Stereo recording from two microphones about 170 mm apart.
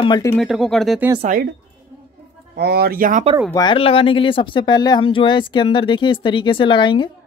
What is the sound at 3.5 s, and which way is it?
Speech, 25° left (ahead or behind).